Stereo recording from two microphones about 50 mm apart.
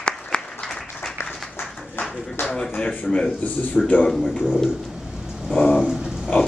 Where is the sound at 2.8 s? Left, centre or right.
Centre.